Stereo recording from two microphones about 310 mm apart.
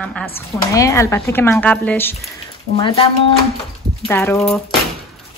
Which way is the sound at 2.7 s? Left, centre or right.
Centre.